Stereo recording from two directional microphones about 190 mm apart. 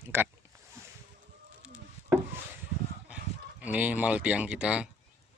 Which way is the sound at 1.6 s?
5° right (ahead or behind).